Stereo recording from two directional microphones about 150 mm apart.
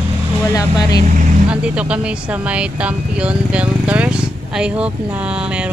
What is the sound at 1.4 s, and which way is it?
Speech, 5° right (ahead or behind).